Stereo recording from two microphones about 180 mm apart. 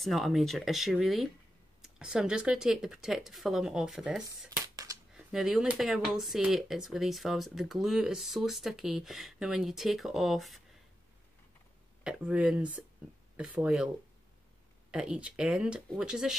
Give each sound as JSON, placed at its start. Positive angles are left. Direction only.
{"t": 0.0, "sound": "speech", "side_deg": 0}
{"t": 4.5, "sound": "a sound", "side_deg": -20}
{"t": 5.1, "sound": "speech", "side_deg": 0}
{"t": 12.0, "sound": "speech", "side_deg": -5}
{"t": 14.9, "sound": "speech", "side_deg": -5}